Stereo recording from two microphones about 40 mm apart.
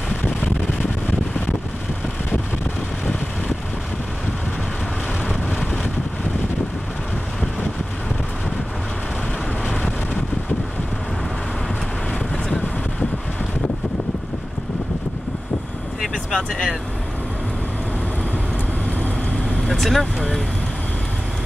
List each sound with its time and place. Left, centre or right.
5.5 s vehicle: left
16.3 s speech: centre
19.7 s speech: centre